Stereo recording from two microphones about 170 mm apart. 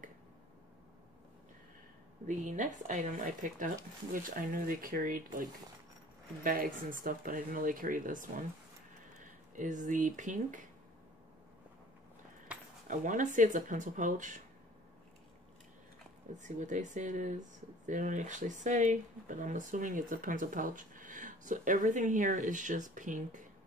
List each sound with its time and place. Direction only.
2.2 s speech: 45° right (ahead or behind)
9.6 s speech: 45° right (ahead or behind)
12.8 s speech: 50° right (ahead or behind)
16.3 s speech: 45° right (ahead or behind)